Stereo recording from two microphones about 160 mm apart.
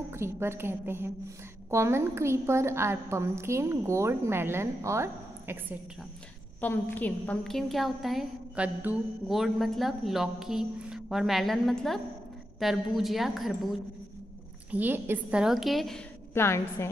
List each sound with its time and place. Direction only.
0.1 s a woman's voice: 15° right (ahead or behind)
6.6 s a woman's voice: 10° left (ahead or behind)
14.7 s a woman's voice: 10° right (ahead or behind)
16.3 s a woman's voice: 15° left (ahead or behind)